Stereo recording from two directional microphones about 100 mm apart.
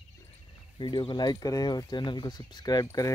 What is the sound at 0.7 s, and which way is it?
Speech, 50° left (ahead or behind).